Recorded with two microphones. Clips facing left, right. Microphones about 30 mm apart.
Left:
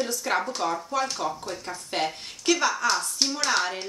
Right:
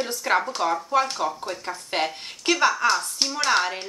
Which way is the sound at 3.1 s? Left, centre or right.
Centre.